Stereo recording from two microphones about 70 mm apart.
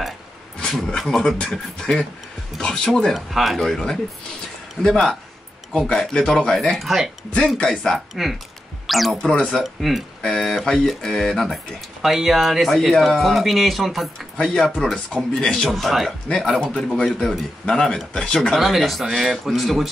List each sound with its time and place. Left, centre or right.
0.6 s speech: centre
9.2 s speech: centre
9.5 s speech: centre
14.3 s speech: centre
18.6 s speech: centre